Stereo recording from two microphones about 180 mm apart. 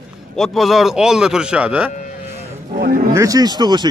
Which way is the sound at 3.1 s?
20° right (ahead or behind).